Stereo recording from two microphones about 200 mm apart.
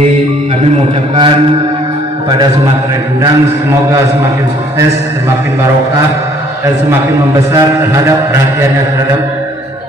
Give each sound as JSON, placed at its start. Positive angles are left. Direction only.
{"t": 1.1, "sound": "mantra", "side_deg": -25}
{"t": 6.6, "sound": "a man's voice", "side_deg": -15}